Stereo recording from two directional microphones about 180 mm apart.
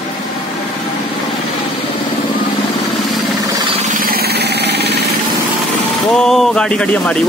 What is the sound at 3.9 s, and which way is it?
Jackhammer, 55° right (ahead or behind).